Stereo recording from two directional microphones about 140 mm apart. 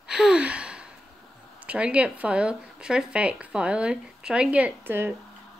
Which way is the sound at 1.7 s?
10° right (ahead or behind).